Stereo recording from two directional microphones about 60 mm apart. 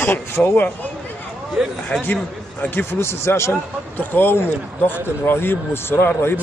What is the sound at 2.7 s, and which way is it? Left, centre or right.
Speech, left.